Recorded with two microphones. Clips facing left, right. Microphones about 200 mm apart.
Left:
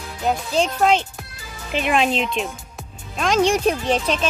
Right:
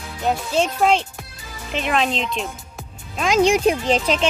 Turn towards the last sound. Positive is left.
turn(degrees=-10)  # may be behind; listen again after turning